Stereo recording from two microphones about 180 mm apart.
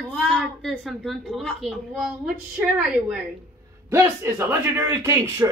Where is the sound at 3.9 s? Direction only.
15° right (ahead or behind).